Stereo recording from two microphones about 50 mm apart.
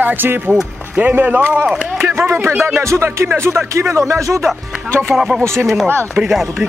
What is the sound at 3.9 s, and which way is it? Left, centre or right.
Speech, right.